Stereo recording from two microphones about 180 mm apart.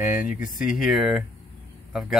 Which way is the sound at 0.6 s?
Centre (ahead or behind).